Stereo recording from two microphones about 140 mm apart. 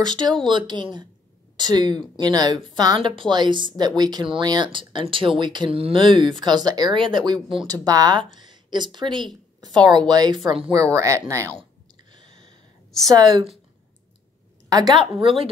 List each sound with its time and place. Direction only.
0.0 s speech: 30° right (ahead or behind)
7.3 s speech: centre (ahead or behind)
7.6 s speech: 25° right (ahead or behind)
12.1 s a sound: 35° right (ahead or behind)
13.1 s speech: 35° right (ahead or behind)
14.7 s speech: 25° right (ahead or behind)
15.1 s speech: 40° right (ahead or behind)